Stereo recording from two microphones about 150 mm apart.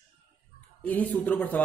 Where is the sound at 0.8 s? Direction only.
10° left (ahead or behind).